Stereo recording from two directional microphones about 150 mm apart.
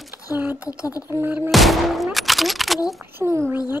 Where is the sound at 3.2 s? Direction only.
15° right (ahead or behind).